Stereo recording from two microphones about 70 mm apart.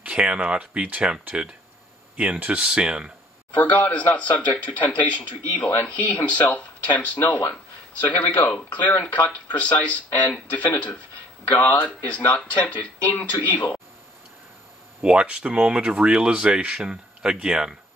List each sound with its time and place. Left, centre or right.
0.0 s speech: centre
3.5 s speech: left
15.0 s speech: centre